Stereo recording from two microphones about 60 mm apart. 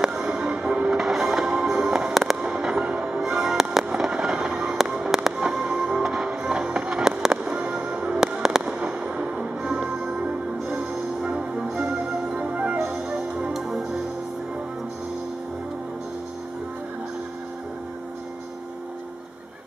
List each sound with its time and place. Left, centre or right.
0.0 s music: centre
2.1 s fireworks: centre
4.8 s music: centre
7.4 s fireworks: right
10.7 s music: centre
13.5 s music: centre